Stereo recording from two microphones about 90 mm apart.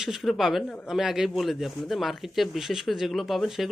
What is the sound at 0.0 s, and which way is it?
Speech, centre (ahead or behind).